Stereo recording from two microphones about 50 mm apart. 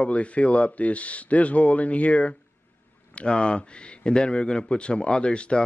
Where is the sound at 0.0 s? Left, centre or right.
Left.